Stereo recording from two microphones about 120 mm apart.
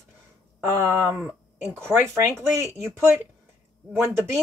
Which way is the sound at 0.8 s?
20° right (ahead or behind).